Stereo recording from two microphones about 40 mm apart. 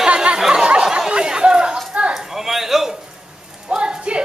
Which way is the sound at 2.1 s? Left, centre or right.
Centre.